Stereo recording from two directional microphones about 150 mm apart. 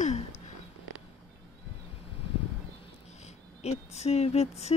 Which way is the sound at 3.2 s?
45° left (ahead or behind).